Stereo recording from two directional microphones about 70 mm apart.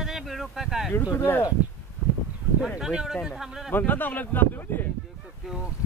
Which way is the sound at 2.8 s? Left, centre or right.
Centre.